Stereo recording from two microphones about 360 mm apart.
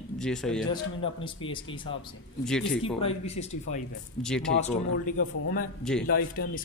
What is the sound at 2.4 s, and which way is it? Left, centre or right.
Speech, centre.